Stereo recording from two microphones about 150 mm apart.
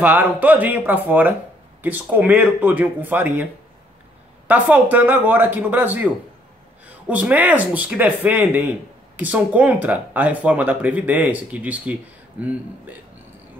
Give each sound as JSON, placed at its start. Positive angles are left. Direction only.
{"t": 0.0, "sound": "speech", "side_deg": -10}
{"t": 4.5, "sound": "speech", "side_deg": -10}